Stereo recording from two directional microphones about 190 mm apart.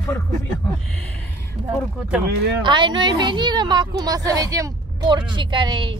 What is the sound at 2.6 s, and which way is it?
A woman's voice, 25° right (ahead or behind).